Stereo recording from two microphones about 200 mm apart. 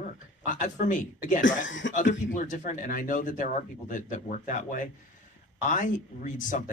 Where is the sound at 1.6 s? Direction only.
70° left (ahead or behind).